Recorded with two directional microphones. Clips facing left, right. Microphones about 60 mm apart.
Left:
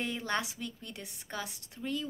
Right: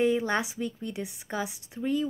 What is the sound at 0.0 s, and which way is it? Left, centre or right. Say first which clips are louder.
A woman's voice: right 9 dB; centre.